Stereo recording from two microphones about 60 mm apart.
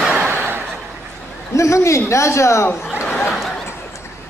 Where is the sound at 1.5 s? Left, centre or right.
Left.